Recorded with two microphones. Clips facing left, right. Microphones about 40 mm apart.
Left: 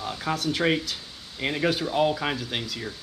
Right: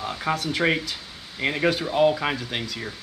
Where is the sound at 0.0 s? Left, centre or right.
Centre.